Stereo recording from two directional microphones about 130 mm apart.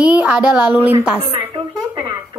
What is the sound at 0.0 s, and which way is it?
A woman's voice, 10° right (ahead or behind).